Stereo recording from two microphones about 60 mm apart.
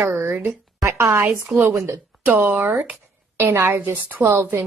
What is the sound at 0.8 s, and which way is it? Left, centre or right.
Speech, right.